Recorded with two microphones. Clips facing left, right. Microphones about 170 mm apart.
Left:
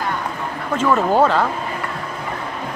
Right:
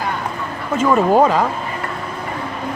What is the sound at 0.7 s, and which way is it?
Speech, 10° right (ahead or behind).